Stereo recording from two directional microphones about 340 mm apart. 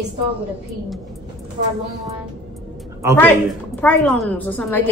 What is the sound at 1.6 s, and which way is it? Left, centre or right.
Speech, right.